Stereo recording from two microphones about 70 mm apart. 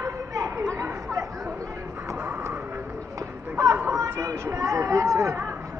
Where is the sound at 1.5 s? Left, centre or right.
Right.